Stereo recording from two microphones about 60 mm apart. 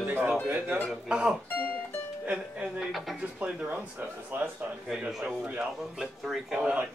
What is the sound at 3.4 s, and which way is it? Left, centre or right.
Speech, right.